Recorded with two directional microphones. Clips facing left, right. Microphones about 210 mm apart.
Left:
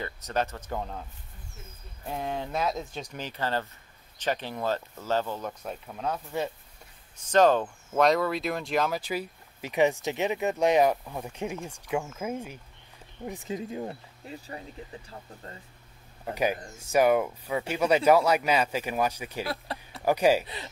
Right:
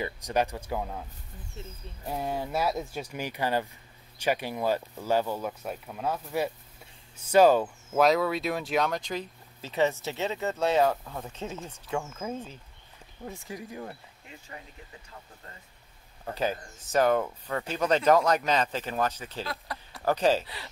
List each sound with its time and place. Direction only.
0.0 s speech: 10° right (ahead or behind)
2.0 s speech: 10° right (ahead or behind); by 13.9 s 20° left (ahead or behind)
14.2 s speech: 35° left (ahead or behind)
16.3 s speech: 15° left (ahead or behind)
19.4 s speech: 30° left (ahead or behind)
20.0 s speech: 10° left (ahead or behind)